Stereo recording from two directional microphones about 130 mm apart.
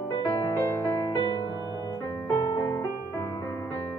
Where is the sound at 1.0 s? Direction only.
35° left (ahead or behind).